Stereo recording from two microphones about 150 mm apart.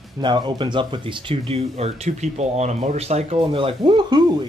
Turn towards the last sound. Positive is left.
turn(degrees=-30)  # may be behind; listen again after turning